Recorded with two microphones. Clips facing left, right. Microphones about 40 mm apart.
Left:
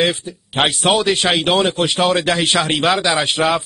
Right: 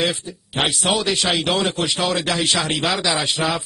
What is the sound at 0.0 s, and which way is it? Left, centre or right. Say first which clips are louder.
A man's voice: left 4 dB; left.